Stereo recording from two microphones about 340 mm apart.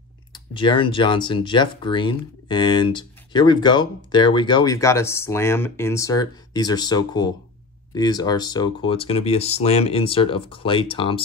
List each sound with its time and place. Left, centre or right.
0.3 s speech: centre